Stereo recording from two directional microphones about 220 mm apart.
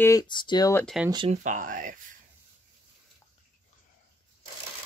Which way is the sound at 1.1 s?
30° right (ahead or behind).